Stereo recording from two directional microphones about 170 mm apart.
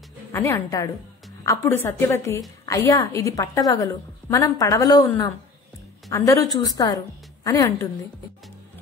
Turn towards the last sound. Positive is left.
turn(degrees=20)  # may be behind; listen again after turning